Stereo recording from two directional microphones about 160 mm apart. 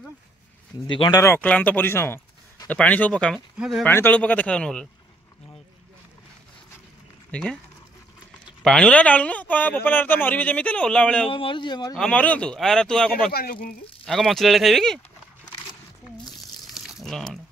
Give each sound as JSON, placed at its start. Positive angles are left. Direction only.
{"t": 0.8, "sound": "a man's voice", "side_deg": 30}
{"t": 1.2, "sound": "speech", "side_deg": 10}
{"t": 3.3, "sound": "speech", "side_deg": -5}
{"t": 3.8, "sound": "a man's voice", "side_deg": 10}
{"t": 7.2, "sound": "speech", "side_deg": 5}
{"t": 8.6, "sound": "a man's voice", "side_deg": 5}
{"t": 11.2, "sound": "a man's voice", "side_deg": 30}
{"t": 11.9, "sound": "speech", "side_deg": 5}
{"t": 13.3, "sound": "speech", "side_deg": 70}
{"t": 14.0, "sound": "speech", "side_deg": 0}
{"t": 16.3, "sound": "crumpling", "side_deg": 0}